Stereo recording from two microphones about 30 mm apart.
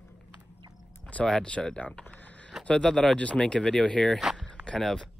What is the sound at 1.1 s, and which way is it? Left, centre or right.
Speech, left.